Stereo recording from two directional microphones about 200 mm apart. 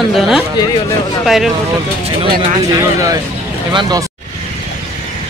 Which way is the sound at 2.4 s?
20° right (ahead or behind).